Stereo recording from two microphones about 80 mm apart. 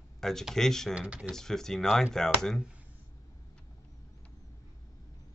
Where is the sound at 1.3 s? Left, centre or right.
Centre.